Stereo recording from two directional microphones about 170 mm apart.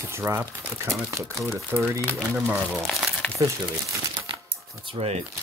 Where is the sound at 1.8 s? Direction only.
Centre (ahead or behind).